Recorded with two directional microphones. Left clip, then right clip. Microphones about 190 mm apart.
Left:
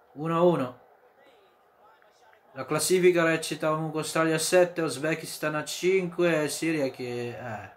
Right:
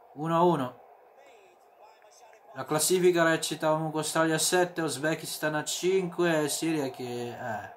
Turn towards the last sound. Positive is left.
turn(degrees=-15)  # may be behind; listen again after turning